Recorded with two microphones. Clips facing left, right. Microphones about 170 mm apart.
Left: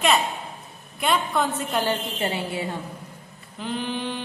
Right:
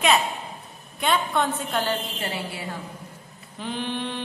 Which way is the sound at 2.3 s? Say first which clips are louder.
Left 4 dB; 25° left (ahead or behind).